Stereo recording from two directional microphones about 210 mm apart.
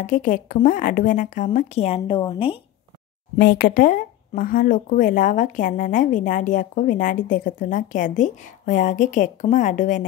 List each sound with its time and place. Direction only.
0.0 s speech: 35° left (ahead or behind)
3.3 s speech: 40° left (ahead or behind)